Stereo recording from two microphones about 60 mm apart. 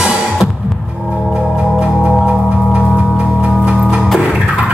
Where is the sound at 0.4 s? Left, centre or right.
Right.